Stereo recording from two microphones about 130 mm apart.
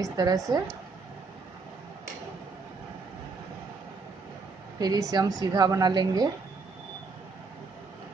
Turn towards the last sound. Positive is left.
turn(degrees=-30)  # may be behind; listen again after turning